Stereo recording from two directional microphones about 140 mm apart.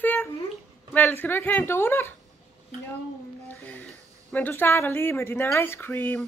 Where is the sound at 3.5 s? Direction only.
15° left (ahead or behind).